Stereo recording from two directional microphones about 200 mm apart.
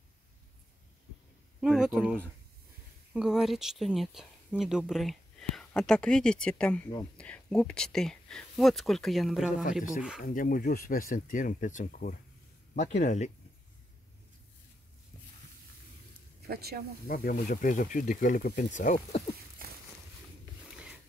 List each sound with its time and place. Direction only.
1.6 s speech: centre (ahead or behind)
10.2 s speech: 45° left (ahead or behind)
16.4 s speech: 50° right (ahead or behind)
17.1 s speech: 45° left (ahead or behind)